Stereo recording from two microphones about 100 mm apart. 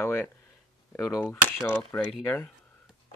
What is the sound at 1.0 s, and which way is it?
Speech, 35° left (ahead or behind).